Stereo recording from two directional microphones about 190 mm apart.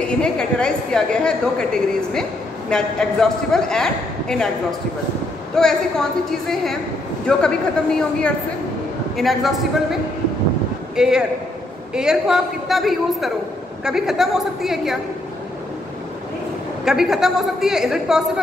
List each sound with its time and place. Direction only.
0.0 s a woman's voice: 5° left (ahead or behind)
5.6 s a woman's voice: 5° left (ahead or behind)
11.0 s a woman's voice: 5° right (ahead or behind)
16.8 s a woman's voice: 5° right (ahead or behind)